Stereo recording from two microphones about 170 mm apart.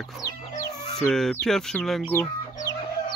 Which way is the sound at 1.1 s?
5° left (ahead or behind).